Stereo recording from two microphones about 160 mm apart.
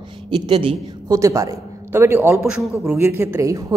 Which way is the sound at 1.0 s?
20° right (ahead or behind).